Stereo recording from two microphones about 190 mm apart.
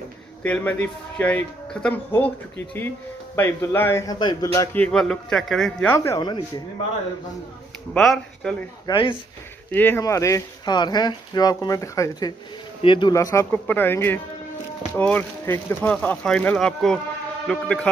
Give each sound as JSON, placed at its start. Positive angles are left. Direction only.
{"t": 0.4, "sound": "a man's voice", "side_deg": 10}
{"t": 3.3, "sound": "a man's voice", "side_deg": 10}
{"t": 7.9, "sound": "speech", "side_deg": 0}
{"t": 8.8, "sound": "speech", "side_deg": 25}
{"t": 9.7, "sound": "a man's voice", "side_deg": 10}